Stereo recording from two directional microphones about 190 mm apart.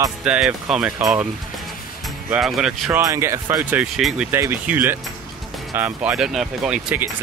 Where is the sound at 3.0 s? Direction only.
15° right (ahead or behind).